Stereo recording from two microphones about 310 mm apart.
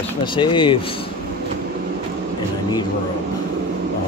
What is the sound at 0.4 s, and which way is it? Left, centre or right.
Speech, centre.